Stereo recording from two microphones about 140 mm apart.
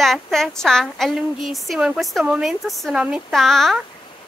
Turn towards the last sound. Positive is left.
turn(degrees=0)  # may be behind; listen again after turning